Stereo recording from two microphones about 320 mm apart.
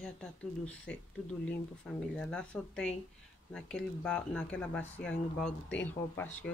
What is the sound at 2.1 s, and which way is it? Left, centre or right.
Speech, centre.